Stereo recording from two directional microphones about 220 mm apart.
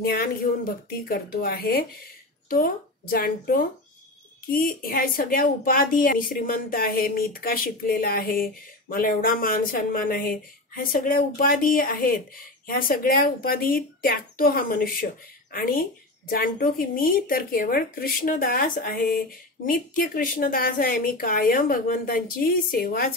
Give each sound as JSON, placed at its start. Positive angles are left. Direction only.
{"t": 0.0, "sound": "speech", "side_deg": 40}